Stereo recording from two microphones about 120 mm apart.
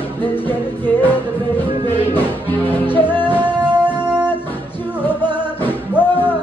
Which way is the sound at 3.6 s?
35° right (ahead or behind).